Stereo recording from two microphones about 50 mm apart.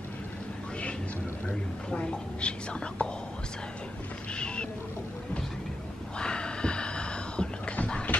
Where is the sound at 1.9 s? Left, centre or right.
Centre.